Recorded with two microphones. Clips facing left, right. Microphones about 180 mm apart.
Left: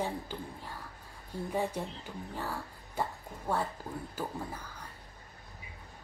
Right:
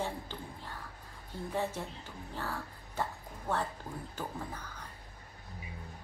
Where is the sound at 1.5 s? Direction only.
10° left (ahead or behind).